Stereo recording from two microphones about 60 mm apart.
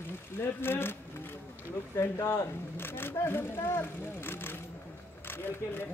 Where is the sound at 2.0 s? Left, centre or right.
Left.